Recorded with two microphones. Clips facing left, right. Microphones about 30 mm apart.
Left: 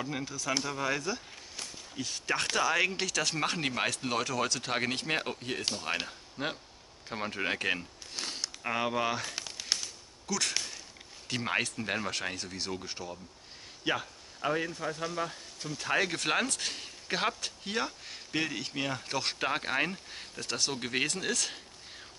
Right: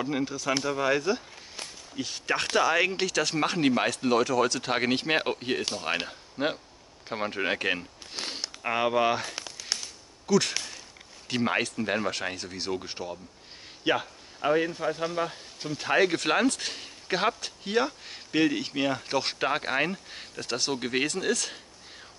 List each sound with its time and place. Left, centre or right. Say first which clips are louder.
0.0 s a man's voice: right 6 dB; centre
9.7 s whip: even; centre
10.2 s a man's voice: right 8 dB; centre